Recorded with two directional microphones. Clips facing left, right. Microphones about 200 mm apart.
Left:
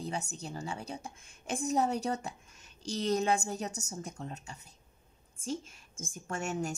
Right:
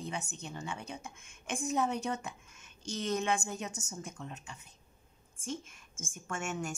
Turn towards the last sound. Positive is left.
turn(degrees=35)  # may be behind; listen again after turning